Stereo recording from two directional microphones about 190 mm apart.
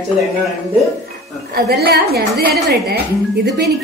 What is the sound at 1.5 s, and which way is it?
Speech, 55° right (ahead or behind).